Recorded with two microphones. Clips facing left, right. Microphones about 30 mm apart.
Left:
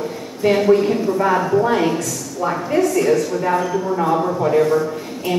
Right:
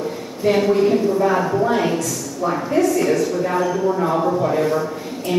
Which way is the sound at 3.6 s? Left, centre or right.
Centre.